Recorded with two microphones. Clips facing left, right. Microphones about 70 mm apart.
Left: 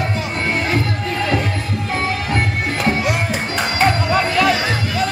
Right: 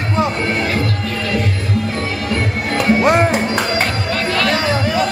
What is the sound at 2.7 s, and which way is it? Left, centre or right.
Music, right.